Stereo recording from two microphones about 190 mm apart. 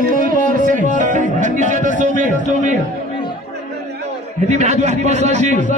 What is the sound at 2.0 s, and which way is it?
Speech, 45° right (ahead or behind).